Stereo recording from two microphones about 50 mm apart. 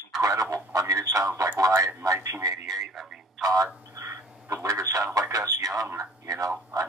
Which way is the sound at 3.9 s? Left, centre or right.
Right.